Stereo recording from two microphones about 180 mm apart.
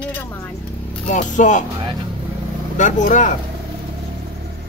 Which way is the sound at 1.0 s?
45° left (ahead or behind).